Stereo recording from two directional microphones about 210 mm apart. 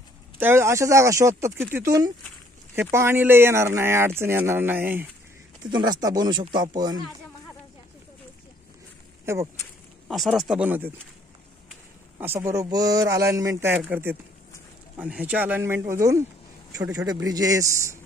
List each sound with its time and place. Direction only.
0.4 s speech: 10° right (ahead or behind)
5.6 s speech: 20° right (ahead or behind)
9.2 s speech: 15° right (ahead or behind)
10.0 s speech: centre (ahead or behind)
12.2 s speech: 10° right (ahead or behind)